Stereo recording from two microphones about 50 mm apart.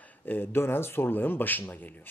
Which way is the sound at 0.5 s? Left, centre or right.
Left.